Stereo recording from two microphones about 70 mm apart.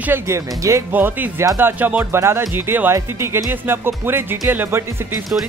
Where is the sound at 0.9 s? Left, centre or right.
Right.